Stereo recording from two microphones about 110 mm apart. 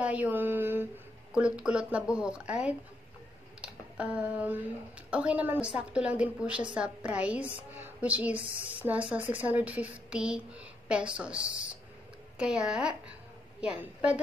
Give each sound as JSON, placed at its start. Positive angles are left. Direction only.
{"t": 0.0, "sound": "a sound", "side_deg": -15}
{"t": 1.3, "sound": "a woman's voice", "side_deg": -10}
{"t": 12.4, "sound": "a woman's voice", "side_deg": -10}